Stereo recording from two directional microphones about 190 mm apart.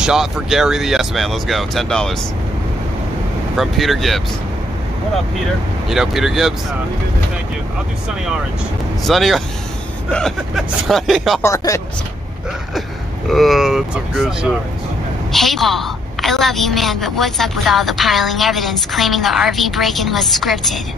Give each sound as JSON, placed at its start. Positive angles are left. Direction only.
{"t": 0.0, "sound": "a woman's voice", "side_deg": 0}
{"t": 3.5, "sound": "a woman's voice", "side_deg": 0}
{"t": 5.9, "sound": "a woman's voice", "side_deg": 0}
{"t": 9.0, "sound": "a woman's voice", "side_deg": 0}
{"t": 11.4, "sound": "speech", "side_deg": 15}
{"t": 13.3, "sound": "a woman's voice", "side_deg": 0}